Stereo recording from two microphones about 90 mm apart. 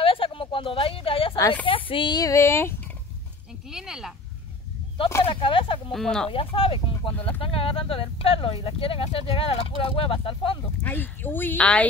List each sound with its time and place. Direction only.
0.0 s a sound: 90° left
1.7 s speech: 75° left (ahead or behind)
2.1 s speech: 35° left (ahead or behind)
3.7 s speech: 5° right (ahead or behind)
5.2 s speech: 80° left
5.9 s speech: 5° left (ahead or behind)
6.3 s speech: 90° left
10.8 s speech: 20° left (ahead or behind)